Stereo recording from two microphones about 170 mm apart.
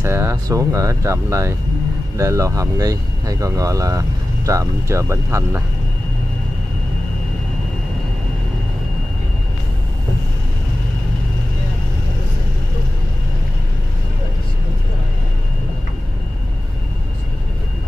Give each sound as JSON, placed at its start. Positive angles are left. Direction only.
{"t": 0.0, "sound": "speech", "side_deg": -15}